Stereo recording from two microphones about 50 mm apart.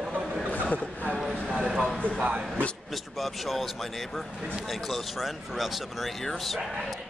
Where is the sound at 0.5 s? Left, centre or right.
Left.